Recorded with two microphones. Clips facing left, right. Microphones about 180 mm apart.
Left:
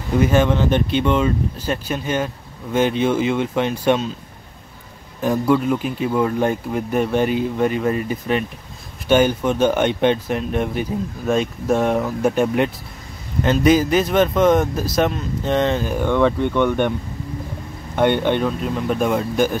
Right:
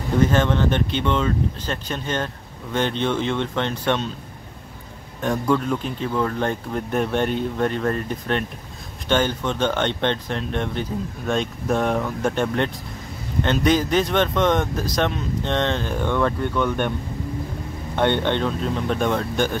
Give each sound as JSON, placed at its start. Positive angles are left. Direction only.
{"t": 0.2, "sound": "speech", "side_deg": 10}
{"t": 5.2, "sound": "speech", "side_deg": 5}
{"t": 17.9, "sound": "speech", "side_deg": 10}